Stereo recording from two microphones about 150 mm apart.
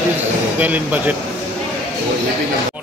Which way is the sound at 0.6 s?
10° right (ahead or behind).